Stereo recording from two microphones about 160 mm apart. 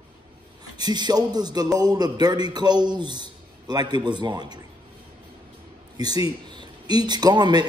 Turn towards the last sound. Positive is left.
turn(degrees=-25)  # may be behind; listen again after turning